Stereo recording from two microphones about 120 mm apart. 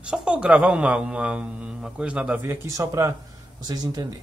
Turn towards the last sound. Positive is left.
turn(degrees=-30)  # may be behind; listen again after turning